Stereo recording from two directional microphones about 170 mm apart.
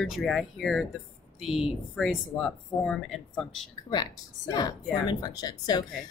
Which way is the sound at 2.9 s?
Centre (ahead or behind).